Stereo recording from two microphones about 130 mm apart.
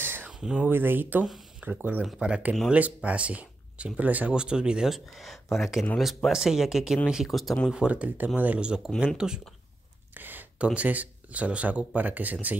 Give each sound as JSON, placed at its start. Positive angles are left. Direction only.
{"t": 0.0, "sound": "a sound", "side_deg": -15}
{"t": 0.3, "sound": "speech", "side_deg": -5}
{"t": 7.7, "sound": "speech", "side_deg": -10}